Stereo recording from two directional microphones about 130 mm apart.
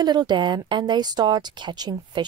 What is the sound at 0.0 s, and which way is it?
Speech, 35° right (ahead or behind).